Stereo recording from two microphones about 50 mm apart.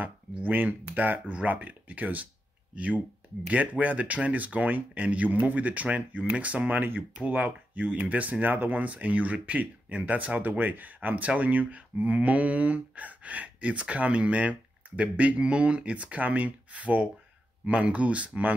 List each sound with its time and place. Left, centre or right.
0.3 s speech: right
6.8 s speech: right